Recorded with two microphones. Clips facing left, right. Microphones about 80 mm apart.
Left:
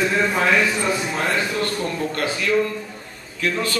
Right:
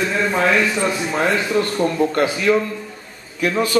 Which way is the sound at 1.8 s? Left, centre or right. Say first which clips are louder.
Right 7 dB; centre.